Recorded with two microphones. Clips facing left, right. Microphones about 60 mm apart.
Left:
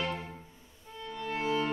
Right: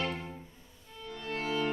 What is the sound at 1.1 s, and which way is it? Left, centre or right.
Music, centre.